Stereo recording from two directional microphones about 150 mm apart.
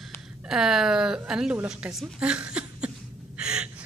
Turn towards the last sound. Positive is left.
turn(degrees=-5)  # may be behind; listen again after turning